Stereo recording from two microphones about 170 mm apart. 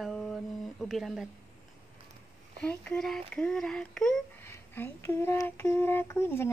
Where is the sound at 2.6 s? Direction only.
5° left (ahead or behind).